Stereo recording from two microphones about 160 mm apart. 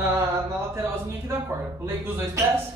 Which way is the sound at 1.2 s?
15° right (ahead or behind).